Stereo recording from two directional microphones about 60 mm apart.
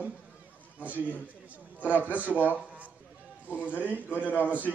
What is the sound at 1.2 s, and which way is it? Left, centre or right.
A man's voice, right.